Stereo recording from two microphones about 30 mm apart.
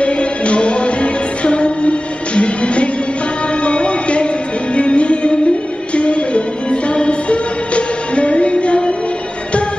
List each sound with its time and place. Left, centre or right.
0.0 s music: left